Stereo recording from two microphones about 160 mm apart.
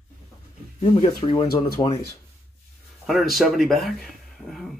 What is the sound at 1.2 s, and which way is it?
Speech, 30° left (ahead or behind).